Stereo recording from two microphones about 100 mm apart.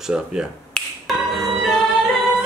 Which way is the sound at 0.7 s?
Centre (ahead or behind).